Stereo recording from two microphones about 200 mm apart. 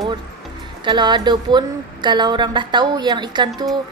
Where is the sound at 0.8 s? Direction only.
20° right (ahead or behind).